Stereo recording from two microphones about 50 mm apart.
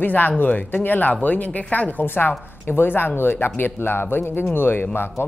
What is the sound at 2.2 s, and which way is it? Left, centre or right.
Speech, left.